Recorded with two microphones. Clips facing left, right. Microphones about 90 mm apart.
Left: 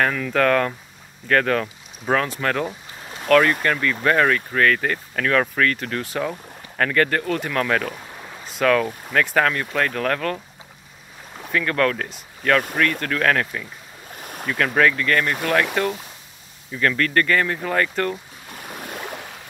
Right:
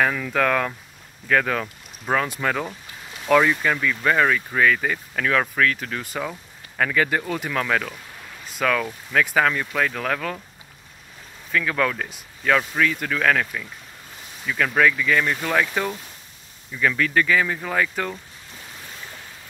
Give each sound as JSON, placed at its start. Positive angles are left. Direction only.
{"t": 0.0, "sound": "speech", "side_deg": -5}
{"t": 7.9, "sound": "a sound", "side_deg": 25}
{"t": 8.5, "sound": "speech", "side_deg": 0}
{"t": 11.5, "sound": "speech", "side_deg": -5}
{"t": 14.2, "sound": "boat", "side_deg": 55}
{"t": 14.5, "sound": "speech", "side_deg": 0}
{"t": 18.5, "sound": "boat", "side_deg": 60}